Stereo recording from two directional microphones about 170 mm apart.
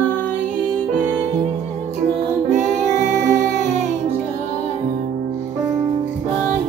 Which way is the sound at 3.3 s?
50° right (ahead or behind).